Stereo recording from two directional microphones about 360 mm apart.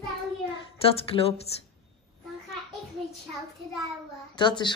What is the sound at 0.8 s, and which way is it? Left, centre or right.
Speech, centre.